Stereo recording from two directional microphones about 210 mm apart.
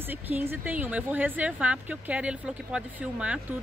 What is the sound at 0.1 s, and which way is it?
A woman's voice, 10° right (ahead or behind).